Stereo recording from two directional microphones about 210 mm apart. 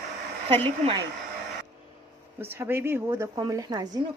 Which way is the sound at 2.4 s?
10° right (ahead or behind).